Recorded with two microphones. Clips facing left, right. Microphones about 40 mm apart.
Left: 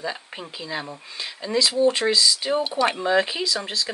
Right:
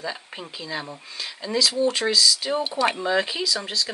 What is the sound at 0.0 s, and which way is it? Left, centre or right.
Speech, centre.